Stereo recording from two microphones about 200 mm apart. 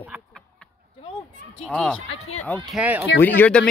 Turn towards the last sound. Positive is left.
turn(degrees=5)  # may be behind; listen again after turning